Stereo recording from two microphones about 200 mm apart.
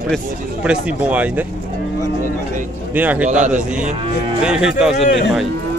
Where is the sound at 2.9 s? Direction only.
10° right (ahead or behind).